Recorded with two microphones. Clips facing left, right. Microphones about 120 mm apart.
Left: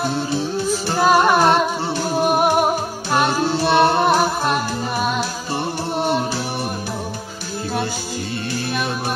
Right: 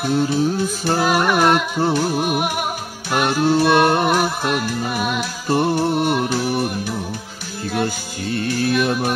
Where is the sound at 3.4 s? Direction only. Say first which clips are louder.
Right 4 dB; 50° right (ahead or behind).